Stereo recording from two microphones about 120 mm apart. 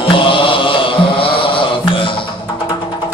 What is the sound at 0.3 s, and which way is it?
Chant, 45° left (ahead or behind).